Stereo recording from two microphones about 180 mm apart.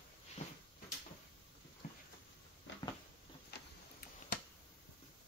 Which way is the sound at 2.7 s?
90° left.